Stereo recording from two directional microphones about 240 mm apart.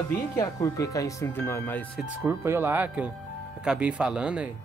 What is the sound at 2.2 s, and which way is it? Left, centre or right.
Speech, centre.